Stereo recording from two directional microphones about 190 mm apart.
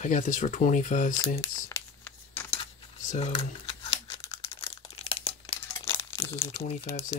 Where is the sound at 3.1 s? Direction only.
35° left (ahead or behind).